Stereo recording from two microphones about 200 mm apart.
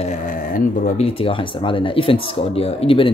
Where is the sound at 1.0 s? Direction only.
30° left (ahead or behind).